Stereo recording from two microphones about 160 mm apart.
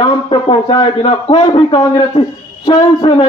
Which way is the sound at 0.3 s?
30° left (ahead or behind).